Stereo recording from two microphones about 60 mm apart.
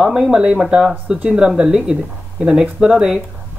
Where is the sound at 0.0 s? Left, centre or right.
Centre.